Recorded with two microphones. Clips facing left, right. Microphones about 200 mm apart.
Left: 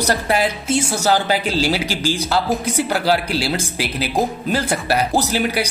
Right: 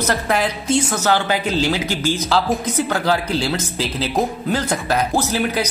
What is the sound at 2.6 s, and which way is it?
Speech, 10° left (ahead or behind).